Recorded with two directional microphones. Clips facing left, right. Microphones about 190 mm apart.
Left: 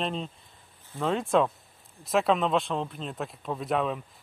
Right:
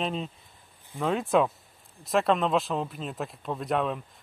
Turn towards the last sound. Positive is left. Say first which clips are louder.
# even
turn(degrees=0)  # may be behind; listen again after turning